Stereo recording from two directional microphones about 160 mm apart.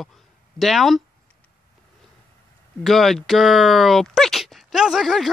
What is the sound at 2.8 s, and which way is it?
Speech, centre (ahead or behind).